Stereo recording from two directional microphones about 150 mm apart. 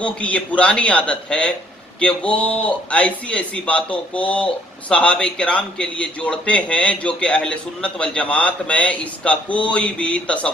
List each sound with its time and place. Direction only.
0.0 s a man's voice: 10° left (ahead or behind)